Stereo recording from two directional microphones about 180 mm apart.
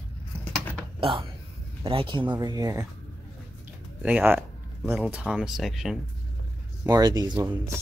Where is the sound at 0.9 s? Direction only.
30° right (ahead or behind).